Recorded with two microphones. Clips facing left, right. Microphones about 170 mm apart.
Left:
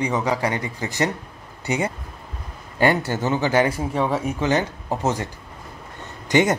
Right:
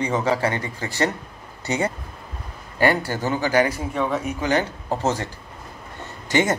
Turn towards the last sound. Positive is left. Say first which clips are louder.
# left 2 dB
turn(degrees=15)  # may be behind; listen again after turning